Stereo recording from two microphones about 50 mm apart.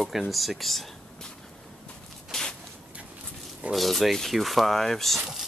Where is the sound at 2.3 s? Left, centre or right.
Centre.